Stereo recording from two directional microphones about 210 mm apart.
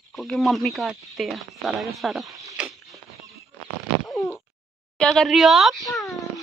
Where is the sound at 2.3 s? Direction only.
15° right (ahead or behind).